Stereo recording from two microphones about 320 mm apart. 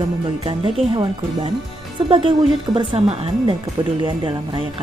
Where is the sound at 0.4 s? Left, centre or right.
Centre.